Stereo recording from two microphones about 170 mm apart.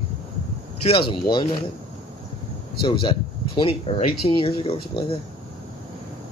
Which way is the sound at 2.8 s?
30° left (ahead or behind).